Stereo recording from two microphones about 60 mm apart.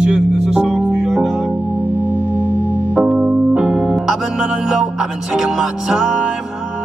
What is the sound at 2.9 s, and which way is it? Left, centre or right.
Music, centre.